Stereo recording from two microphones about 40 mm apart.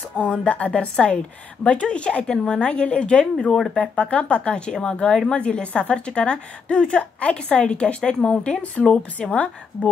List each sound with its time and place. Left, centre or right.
0.2 s speech: centre
0.5 s a woman's voice: left